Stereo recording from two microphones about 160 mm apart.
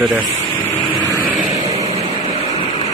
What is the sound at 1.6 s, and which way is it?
Vehicle, 40° right (ahead or behind).